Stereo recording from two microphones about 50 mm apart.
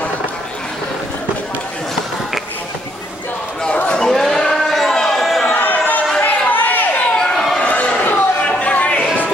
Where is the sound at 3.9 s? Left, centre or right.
Centre.